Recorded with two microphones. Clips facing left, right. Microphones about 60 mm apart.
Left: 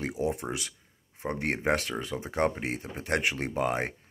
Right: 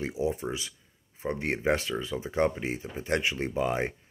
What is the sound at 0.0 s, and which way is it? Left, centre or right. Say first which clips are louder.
Speech: right 1 dB; left.